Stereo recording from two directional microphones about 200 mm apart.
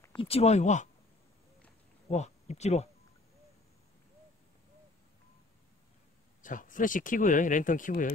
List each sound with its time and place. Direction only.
0.0 s speech: 25° left (ahead or behind)
2.0 s speech: 35° left (ahead or behind)
6.4 s speech: 40° left (ahead or behind)